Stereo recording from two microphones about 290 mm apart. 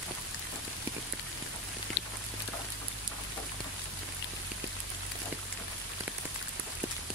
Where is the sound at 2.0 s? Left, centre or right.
Left.